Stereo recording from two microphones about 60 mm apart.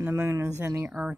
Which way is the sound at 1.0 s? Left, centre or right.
Right.